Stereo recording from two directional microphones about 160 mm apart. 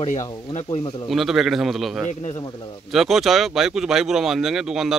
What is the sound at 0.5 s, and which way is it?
Speech, 35° left (ahead or behind).